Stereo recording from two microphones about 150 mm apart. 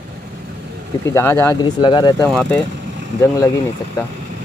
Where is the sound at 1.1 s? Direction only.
20° left (ahead or behind).